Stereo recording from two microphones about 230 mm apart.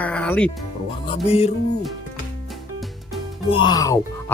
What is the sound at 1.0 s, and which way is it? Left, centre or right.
Music, left.